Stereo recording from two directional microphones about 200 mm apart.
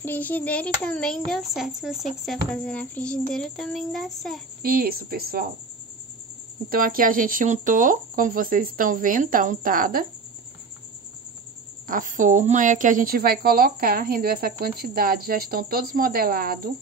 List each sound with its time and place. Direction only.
0.0 s speech: 10° left (ahead or behind)
4.6 s speech: 50° right (ahead or behind)
6.7 s speech: 45° right (ahead or behind)
11.9 s speech: 40° right (ahead or behind)